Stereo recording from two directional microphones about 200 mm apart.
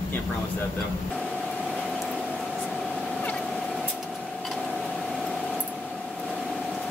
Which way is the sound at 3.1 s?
5° left (ahead or behind).